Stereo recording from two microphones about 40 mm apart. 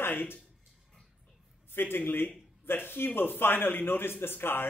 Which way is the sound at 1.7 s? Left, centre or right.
Left.